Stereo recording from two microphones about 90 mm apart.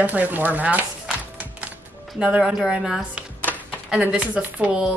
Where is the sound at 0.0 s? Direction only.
15° right (ahead or behind).